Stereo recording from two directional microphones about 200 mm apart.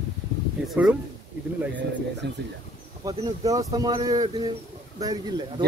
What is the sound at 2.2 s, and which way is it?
Speech, 60° right (ahead or behind).